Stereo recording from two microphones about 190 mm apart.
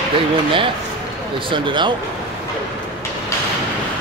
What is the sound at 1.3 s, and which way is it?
Speech, 25° right (ahead or behind).